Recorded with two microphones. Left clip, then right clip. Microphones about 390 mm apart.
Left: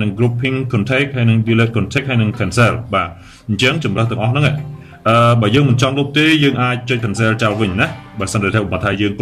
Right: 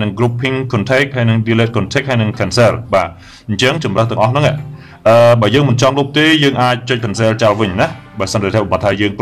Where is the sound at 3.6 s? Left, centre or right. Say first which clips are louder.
Right 3 dB; centre.